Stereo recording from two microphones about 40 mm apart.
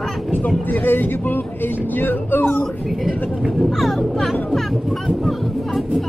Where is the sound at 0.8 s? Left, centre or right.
Left.